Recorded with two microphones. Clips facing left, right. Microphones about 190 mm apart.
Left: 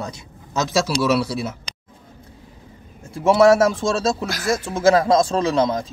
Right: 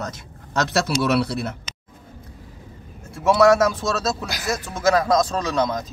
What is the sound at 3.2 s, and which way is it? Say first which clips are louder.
A man's voice: left 2 dB; 25° left (ahead or behind).